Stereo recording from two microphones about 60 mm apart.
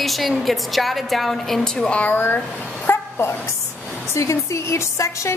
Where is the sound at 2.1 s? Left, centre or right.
Left.